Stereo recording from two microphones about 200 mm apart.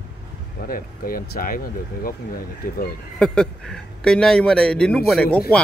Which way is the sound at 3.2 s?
5° left (ahead or behind).